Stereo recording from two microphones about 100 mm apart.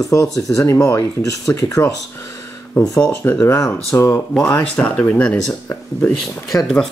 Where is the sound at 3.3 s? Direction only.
35° left (ahead or behind); by 5.6 s 15° left (ahead or behind).